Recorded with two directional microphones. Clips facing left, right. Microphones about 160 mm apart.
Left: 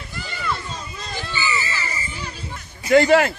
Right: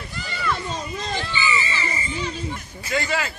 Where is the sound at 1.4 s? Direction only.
15° right (ahead or behind).